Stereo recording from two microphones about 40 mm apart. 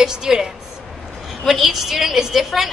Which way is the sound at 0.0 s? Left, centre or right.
Centre.